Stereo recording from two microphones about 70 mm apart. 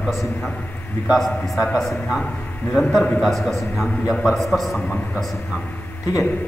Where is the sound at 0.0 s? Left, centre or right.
Centre.